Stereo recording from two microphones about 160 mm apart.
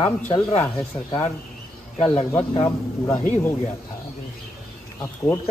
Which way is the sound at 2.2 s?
15° left (ahead or behind).